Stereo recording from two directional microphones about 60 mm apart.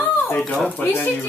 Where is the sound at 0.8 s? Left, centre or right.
Left.